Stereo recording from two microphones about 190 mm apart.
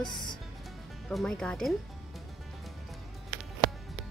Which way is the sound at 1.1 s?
5° left (ahead or behind).